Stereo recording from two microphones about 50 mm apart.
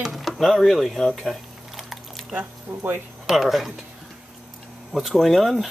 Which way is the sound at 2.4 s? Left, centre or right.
Right.